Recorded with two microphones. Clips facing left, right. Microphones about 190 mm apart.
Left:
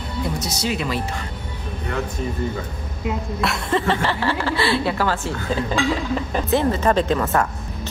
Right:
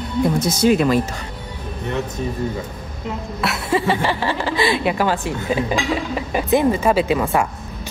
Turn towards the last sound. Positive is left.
turn(degrees=-10)  # may be behind; listen again after turning